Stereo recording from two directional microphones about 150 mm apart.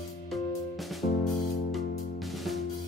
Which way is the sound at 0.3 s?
Centre (ahead or behind).